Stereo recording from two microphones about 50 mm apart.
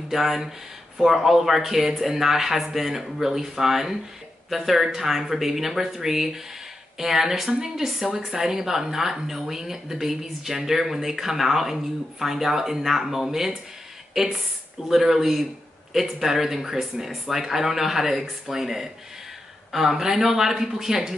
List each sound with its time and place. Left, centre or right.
0.1 s speech: centre